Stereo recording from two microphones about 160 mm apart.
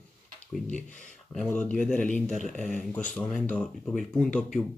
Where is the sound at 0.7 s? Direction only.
5° left (ahead or behind).